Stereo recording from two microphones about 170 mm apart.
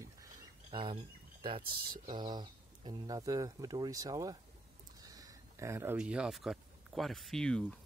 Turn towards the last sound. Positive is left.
turn(degrees=5)  # may be behind; listen again after turning